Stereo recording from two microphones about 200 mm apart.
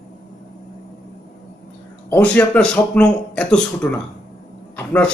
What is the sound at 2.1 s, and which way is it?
Speech, 5° left (ahead or behind).